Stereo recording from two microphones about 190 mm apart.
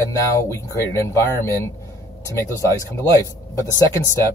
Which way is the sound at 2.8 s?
15° left (ahead or behind).